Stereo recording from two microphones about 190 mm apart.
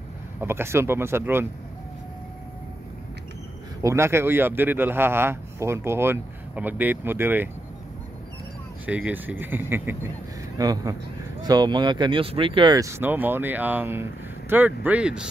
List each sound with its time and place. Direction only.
0.4 s speech: 10° right (ahead or behind)
3.8 s speech: 15° right (ahead or behind)
8.8 s speech: 10° right (ahead or behind)